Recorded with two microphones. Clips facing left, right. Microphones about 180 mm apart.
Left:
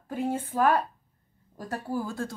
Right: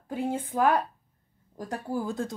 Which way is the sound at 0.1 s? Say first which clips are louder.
Even; 15° right (ahead or behind).